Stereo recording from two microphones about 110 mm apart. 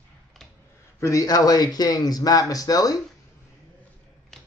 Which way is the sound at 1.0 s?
30° left (ahead or behind).